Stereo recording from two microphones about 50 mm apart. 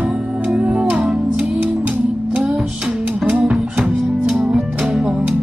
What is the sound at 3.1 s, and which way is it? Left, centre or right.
Music, centre.